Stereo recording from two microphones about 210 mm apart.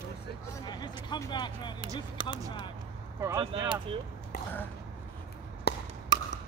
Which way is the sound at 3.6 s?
25° right (ahead or behind).